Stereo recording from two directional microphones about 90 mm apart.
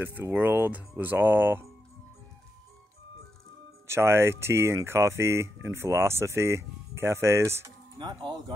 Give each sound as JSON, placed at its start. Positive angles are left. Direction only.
{"t": 0.0, "sound": "speech", "side_deg": -25}
{"t": 3.8, "sound": "speech", "side_deg": -30}
{"t": 8.0, "sound": "speech", "side_deg": -50}